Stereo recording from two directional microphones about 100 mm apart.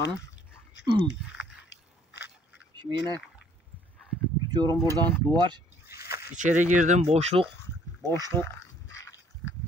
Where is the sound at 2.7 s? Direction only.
50° right (ahead or behind).